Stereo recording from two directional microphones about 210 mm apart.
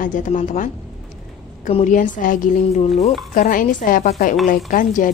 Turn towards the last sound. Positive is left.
turn(degrees=40)  # may be behind; listen again after turning